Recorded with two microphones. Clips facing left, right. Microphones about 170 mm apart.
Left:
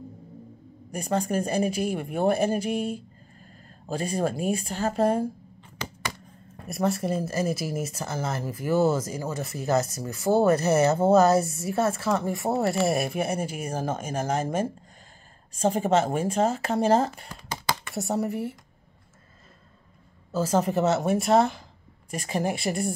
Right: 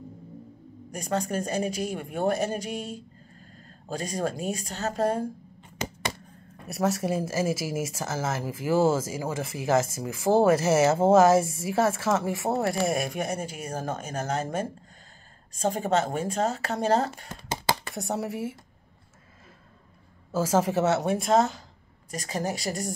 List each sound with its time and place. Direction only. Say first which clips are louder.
0.9 s a woman's voice: left 2 dB; 10° left (ahead or behind)
5.6 s a sound: right 3 dB; 20° right (ahead or behind)
6.8 s speech: even; 5° right (ahead or behind)
11.4 s a woman's voice: right 1 dB; 90° right
12.2 s a woman's voice: left 1 dB; centre (ahead or behind)
15.6 s a woman's voice: left 3 dB; 10° left (ahead or behind)
17.3 s a sound: right 2 dB; 25° right (ahead or behind)
17.9 s speech: left 3 dB; centre (ahead or behind)
20.2 s speech: even; 10° right (ahead or behind)
21.3 s a woman's voice: left 1 dB; 10° left (ahead or behind)